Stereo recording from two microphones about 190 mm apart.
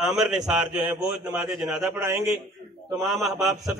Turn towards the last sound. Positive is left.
turn(degrees=0)  # may be behind; listen again after turning